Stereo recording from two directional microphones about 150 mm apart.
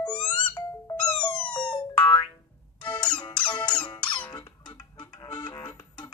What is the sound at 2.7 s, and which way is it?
Music, 30° left (ahead or behind).